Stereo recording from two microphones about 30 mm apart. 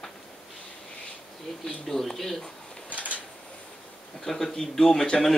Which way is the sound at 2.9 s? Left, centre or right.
Right.